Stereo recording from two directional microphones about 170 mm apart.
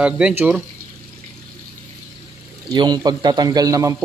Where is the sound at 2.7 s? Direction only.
25° right (ahead or behind).